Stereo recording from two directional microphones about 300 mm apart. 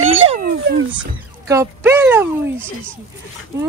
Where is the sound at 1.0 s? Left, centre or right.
Centre.